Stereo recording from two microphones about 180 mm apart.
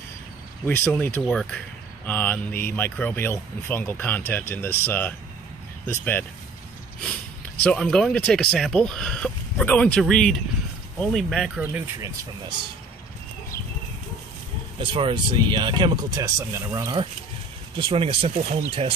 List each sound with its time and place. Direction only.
0.7 s speech: 10° left (ahead or behind)
7.4 s speech: 5° left (ahead or behind)
11.6 s speech: 10° right (ahead or behind)
14.8 s speech: 30° right (ahead or behind)
17.7 s speech: 30° right (ahead or behind)